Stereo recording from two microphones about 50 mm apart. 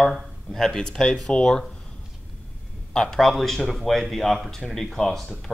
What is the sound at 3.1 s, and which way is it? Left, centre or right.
Speech, centre.